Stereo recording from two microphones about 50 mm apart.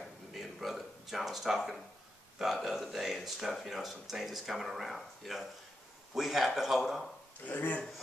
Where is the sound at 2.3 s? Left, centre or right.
Centre.